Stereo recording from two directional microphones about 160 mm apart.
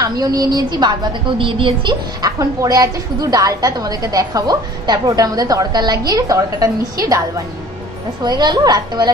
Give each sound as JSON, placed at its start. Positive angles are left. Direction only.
{"t": 0.0, "sound": "a woman's voice", "side_deg": -25}